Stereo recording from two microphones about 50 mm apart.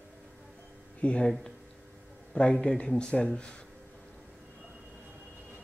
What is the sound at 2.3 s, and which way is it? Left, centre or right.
Speech, centre.